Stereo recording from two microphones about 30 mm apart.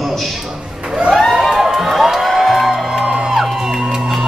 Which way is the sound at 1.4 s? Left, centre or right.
Centre.